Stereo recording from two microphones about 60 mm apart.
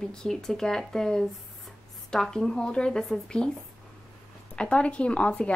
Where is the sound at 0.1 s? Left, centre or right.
Centre.